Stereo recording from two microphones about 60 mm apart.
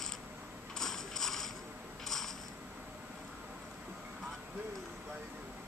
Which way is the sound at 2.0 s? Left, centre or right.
Centre.